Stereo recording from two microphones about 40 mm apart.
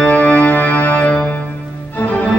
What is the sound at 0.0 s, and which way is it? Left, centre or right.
Organ, left.